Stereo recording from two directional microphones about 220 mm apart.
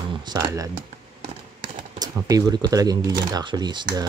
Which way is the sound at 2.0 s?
15° right (ahead or behind).